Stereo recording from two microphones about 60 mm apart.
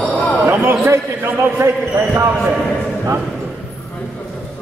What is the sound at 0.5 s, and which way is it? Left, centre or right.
Speech, right.